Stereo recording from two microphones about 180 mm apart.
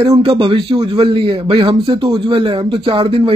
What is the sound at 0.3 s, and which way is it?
Speech, 25° right (ahead or behind).